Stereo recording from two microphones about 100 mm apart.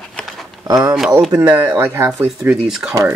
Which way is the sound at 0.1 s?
5° left (ahead or behind).